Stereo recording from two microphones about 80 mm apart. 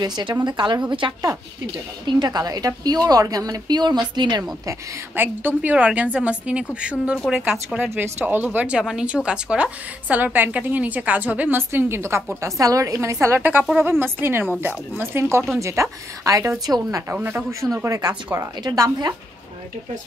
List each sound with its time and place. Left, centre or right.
0.0 s a woman's voice: right
0.8 s a woman's voice: right
1.7 s a woman's voice: right
5.1 s a woman's voice: right; by 7.5 s centre
7.7 s a woman's voice: right
13.4 s a woman's voice: right
17.1 s speech: right
17.8 s a woman's voice: right
18.6 s a woman's voice: right